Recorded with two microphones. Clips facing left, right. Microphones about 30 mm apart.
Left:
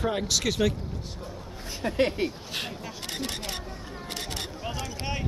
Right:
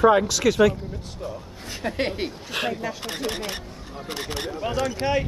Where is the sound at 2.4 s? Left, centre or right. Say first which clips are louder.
Right 8 dB; right.